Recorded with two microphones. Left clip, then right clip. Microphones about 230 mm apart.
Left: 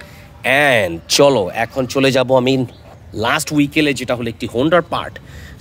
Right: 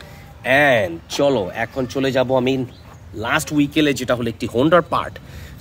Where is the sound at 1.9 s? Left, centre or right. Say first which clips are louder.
Left 5 dB; left; by 5.1 s centre.